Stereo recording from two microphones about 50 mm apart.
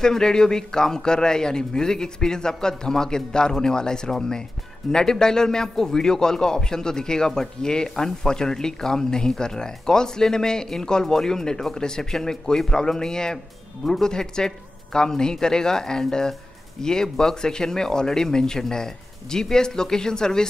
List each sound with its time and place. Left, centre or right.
0.0 s a man's voice: centre